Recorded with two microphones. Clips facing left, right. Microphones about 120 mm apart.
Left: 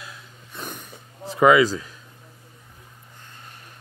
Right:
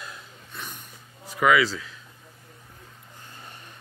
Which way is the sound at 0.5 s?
20° left (ahead or behind).